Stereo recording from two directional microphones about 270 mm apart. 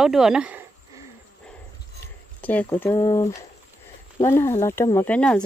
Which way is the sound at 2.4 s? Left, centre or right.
Centre.